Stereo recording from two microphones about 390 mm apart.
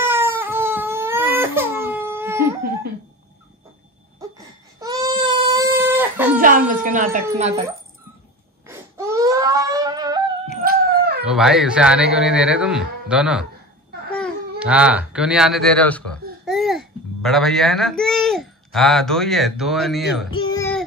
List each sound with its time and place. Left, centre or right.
0.0 s crying: centre
4.2 s baby cry: centre
6.3 s a sound: right
7.2 s speech: centre
8.6 s baby cry: centre
10.6 s a sound: right
11.2 s speech: centre
14.6 s speech: centre
20.2 s child singing: centre